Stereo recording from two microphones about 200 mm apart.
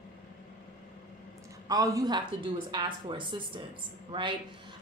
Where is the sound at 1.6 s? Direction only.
15° right (ahead or behind).